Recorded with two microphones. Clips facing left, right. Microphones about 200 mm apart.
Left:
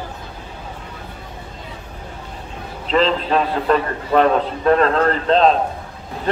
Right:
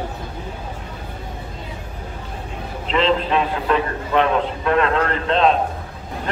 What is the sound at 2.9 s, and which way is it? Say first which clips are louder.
A man's voice: left 1 dB; 40° left (ahead or behind).